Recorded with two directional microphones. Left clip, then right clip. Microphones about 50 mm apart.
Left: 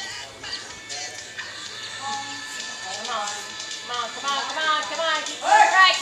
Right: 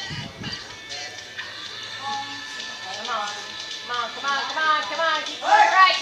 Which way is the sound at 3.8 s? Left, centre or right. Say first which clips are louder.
Right 1 dB; centre.